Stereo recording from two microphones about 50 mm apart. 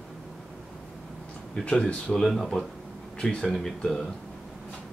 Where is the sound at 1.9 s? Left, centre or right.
Centre.